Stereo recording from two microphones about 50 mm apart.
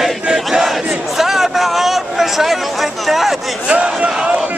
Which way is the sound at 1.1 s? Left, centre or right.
Centre.